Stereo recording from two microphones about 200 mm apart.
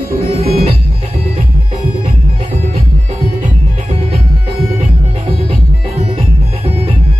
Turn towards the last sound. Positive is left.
turn(degrees=-25)  # may be behind; listen again after turning